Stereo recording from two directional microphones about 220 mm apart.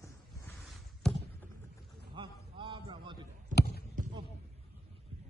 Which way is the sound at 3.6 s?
45° left (ahead or behind).